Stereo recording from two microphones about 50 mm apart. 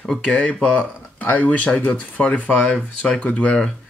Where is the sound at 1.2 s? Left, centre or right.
Left.